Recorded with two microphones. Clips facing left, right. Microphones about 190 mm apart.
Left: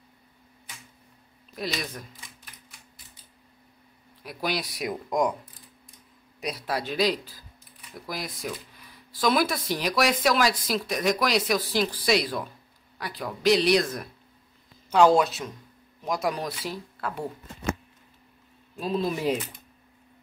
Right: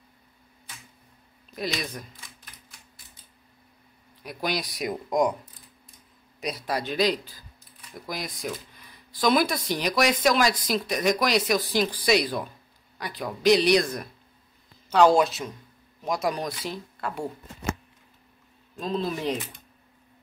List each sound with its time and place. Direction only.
1.5 s speech: centre (ahead or behind)
4.2 s speech: 5° left (ahead or behind)
6.4 s speech: 5° left (ahead or behind)
18.8 s speech: 10° left (ahead or behind)